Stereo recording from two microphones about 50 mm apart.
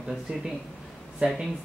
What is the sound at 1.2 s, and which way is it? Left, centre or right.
Speech, right.